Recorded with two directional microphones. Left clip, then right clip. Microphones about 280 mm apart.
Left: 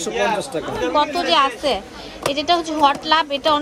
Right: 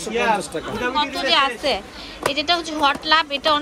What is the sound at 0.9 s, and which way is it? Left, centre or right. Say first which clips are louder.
A woman's voice: left 2 dB; centre.